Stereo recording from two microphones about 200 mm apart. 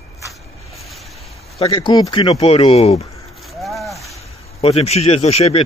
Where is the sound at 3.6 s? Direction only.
Centre (ahead or behind).